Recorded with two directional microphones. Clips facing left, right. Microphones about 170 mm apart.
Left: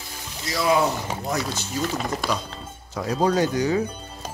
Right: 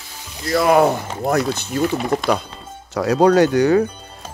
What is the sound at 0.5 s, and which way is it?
Speech, 55° right (ahead or behind).